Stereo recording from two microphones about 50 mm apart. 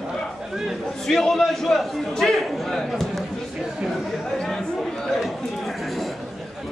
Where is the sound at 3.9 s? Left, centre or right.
Centre.